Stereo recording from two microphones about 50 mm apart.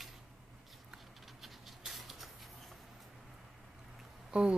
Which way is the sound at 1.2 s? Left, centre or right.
Centre.